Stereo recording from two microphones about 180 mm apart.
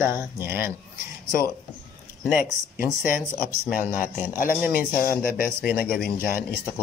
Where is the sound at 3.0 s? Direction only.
50° left (ahead or behind).